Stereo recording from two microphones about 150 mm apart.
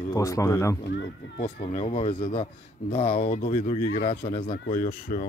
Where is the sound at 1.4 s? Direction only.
35° left (ahead or behind).